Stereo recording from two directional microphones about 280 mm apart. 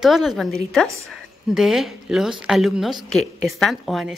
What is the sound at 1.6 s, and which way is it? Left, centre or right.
A woman's voice, centre.